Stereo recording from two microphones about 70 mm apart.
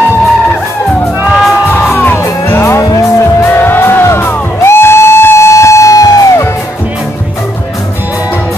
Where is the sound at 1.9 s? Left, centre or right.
Left.